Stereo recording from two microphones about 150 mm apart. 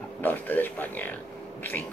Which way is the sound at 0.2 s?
10° left (ahead or behind).